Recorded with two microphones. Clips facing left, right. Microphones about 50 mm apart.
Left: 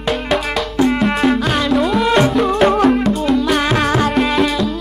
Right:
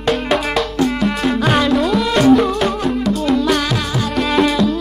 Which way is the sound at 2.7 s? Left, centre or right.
Left.